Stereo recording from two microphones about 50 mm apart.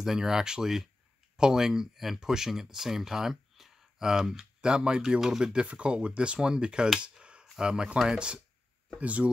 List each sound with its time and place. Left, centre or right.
0.0 s speech: centre
7.2 s a sound: centre
7.5 s speech: centre